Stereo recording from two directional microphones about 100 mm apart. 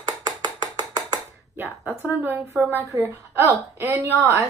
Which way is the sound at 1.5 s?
20° right (ahead or behind).